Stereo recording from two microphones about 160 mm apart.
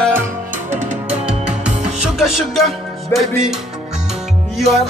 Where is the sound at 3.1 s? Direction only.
15° left (ahead or behind).